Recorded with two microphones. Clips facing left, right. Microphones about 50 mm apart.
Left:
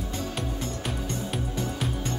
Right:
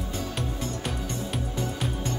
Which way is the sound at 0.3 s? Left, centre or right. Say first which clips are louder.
Even; centre.